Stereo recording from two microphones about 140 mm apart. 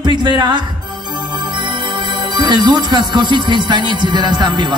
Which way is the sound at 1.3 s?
30° right (ahead or behind).